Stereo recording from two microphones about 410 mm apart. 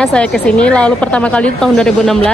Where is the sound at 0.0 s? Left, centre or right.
Centre.